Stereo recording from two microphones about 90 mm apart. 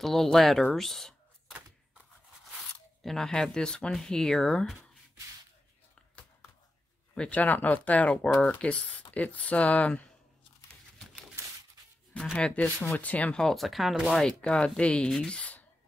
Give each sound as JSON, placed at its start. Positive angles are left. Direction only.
{"t": 0.0, "sound": "speech", "side_deg": 5}
{"t": 2.5, "sound": "speech", "side_deg": 5}
{"t": 7.2, "sound": "speech", "side_deg": 15}
{"t": 12.1, "sound": "speech", "side_deg": 5}